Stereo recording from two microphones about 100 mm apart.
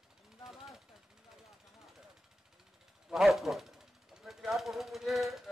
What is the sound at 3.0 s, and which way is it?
Speech, centre (ahead or behind).